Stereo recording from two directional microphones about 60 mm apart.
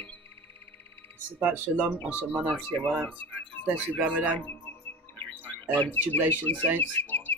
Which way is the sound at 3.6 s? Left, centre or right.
Right.